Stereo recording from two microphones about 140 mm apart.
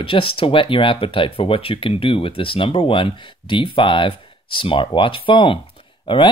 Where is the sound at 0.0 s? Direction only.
40° left (ahead or behind).